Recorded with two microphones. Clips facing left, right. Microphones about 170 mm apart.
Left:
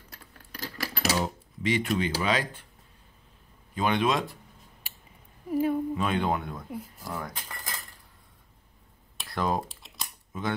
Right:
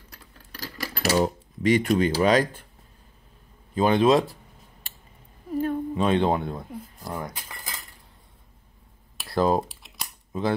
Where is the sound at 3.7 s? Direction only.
35° right (ahead or behind).